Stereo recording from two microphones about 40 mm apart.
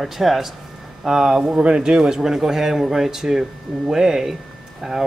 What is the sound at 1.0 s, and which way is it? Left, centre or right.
Speech, centre.